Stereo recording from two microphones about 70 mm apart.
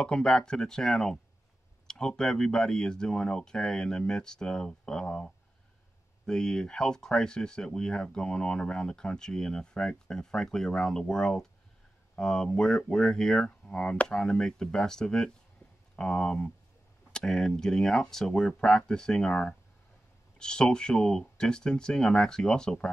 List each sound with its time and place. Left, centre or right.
0.0 s speech: centre